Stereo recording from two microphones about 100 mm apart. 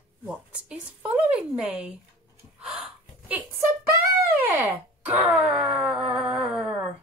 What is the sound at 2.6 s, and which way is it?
Gasp, 5° right (ahead or behind).